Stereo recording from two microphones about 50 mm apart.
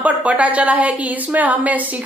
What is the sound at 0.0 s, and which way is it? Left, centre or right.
Speech, right.